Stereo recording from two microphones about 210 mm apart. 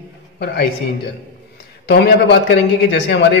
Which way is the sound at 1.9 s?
50° left (ahead or behind).